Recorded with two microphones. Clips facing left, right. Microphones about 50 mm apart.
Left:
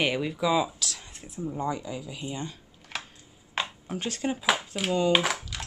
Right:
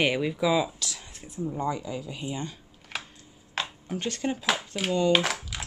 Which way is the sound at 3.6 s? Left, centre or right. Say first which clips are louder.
Left 1 dB; centre.